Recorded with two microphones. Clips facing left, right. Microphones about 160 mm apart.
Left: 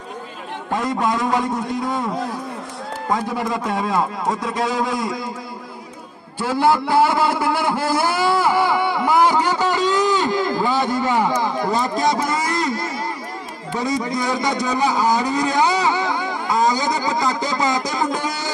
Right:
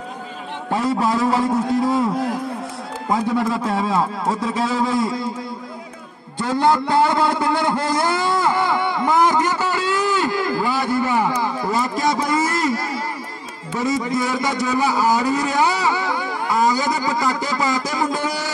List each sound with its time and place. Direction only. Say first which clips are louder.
0.7 s a man's voice: right 2 dB; 5° right (ahead or behind)
3.4 s a man's voice: right 1 dB; centre (ahead or behind)
6.4 s a man's voice: even; 10° left (ahead or behind)
7.9 s a sound: left 1 dB; 10° left (ahead or behind)
13.7 s a man's voice: right 1 dB; 15° left (ahead or behind)
15.5 s a sound: left 1 dB; 20° left (ahead or behind)
16.4 s a man's voice: even; 20° left (ahead or behind)